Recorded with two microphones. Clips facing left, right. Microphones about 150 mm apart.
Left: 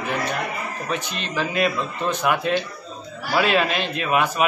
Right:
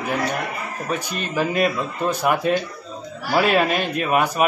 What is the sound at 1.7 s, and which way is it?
Speech, 10° right (ahead or behind).